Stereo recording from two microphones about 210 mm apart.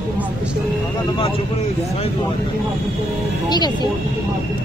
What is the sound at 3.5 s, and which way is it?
Speech, 20° left (ahead or behind).